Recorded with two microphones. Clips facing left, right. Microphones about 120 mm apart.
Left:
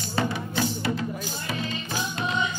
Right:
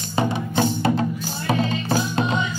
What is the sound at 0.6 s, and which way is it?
Music, 50° right (ahead or behind).